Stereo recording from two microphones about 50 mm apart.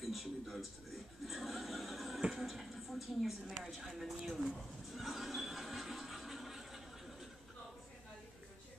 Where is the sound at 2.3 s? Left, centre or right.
Centre.